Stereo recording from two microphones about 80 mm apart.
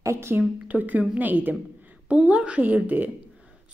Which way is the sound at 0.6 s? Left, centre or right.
Centre.